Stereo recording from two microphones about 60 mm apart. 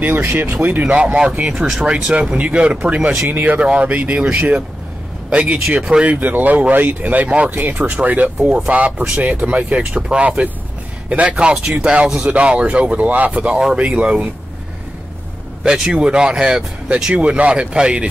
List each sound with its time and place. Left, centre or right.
0.0 s speech: right
0.8 s speech: centre
1.5 s speech: centre
2.3 s speech: right
6.1 s speech: right
7.5 s speech: right
8.4 s speech: centre
15.6 s speech: centre